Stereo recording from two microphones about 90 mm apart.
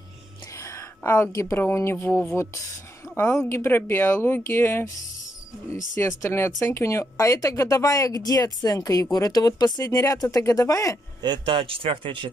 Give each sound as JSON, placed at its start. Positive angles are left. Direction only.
{"t": 0.6, "sound": "a sound", "side_deg": 35}
{"t": 1.6, "sound": "speech", "side_deg": 25}
{"t": 5.9, "sound": "speech", "side_deg": 30}
{"t": 11.2, "sound": "speech", "side_deg": -60}